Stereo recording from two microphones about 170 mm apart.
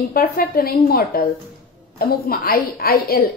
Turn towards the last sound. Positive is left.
turn(degrees=60)  # may be behind; listen again after turning